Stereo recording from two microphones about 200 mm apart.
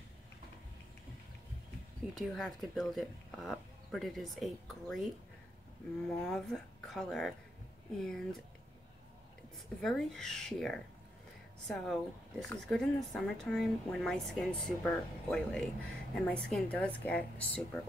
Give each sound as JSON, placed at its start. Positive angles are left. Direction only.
{"t": 2.1, "sound": "speech", "side_deg": 0}
{"t": 9.8, "sound": "speech", "side_deg": 0}